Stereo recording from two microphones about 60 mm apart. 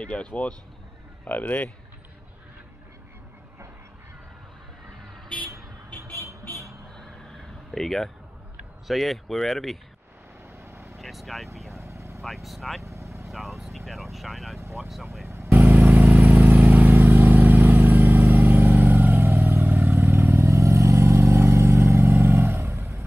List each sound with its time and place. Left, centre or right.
0.0 s speech: centre
7.7 s speech: centre
10.6 s vehicle: right
11.0 s speech: centre
11.7 s vehicle: right
12.2 s speech: centre
12.8 s vehicle: right
13.3 s vehicle: centre
14.1 s speech: centre
14.6 s speech: right
15.2 s vehicle: right
15.6 s vehicle: right